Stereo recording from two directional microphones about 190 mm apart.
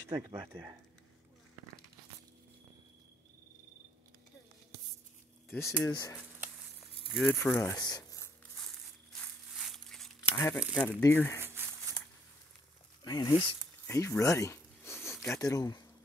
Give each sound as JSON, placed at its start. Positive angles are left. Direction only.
{"t": 0.1, "sound": "speech", "side_deg": -20}
{"t": 5.6, "sound": "speech", "side_deg": 15}
{"t": 7.1, "sound": "speech", "side_deg": 10}
{"t": 7.7, "sound": "a sound", "side_deg": 20}
{"t": 9.1, "sound": "a sound", "side_deg": 0}
{"t": 10.3, "sound": "speech", "side_deg": 10}
{"t": 10.6, "sound": "speech", "side_deg": -5}
{"t": 10.9, "sound": "speech", "side_deg": 10}
{"t": 13.0, "sound": "speech", "side_deg": 20}
{"t": 13.8, "sound": "a sound", "side_deg": 15}